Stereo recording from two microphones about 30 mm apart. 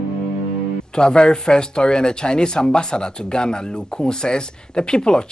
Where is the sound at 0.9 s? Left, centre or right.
Left.